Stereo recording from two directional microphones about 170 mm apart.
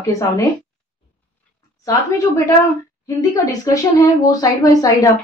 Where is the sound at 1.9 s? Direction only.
20° left (ahead or behind).